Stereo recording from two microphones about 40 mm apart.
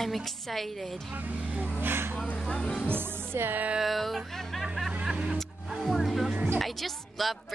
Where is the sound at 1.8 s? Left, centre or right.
Right.